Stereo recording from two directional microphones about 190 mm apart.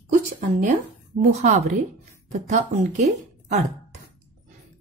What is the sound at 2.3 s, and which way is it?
Speech, 35° right (ahead or behind).